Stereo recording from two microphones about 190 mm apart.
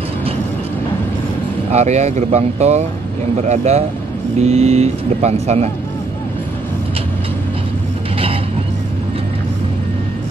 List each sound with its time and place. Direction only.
1.7 s speech: 35° right (ahead or behind)